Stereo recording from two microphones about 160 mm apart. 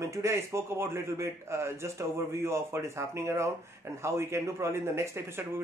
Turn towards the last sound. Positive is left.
turn(degrees=-15)  # may be behind; listen again after turning